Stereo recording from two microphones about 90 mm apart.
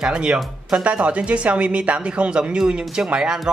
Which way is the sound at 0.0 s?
10° right (ahead or behind).